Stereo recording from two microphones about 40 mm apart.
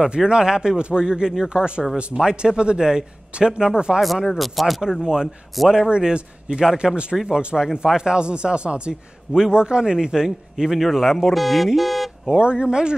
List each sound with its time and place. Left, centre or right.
0.0 s a man's voice: centre
4.3 s speech: centre
5.0 s a man's voice: centre
10.8 s speech: centre
12.3 s a man's voice: right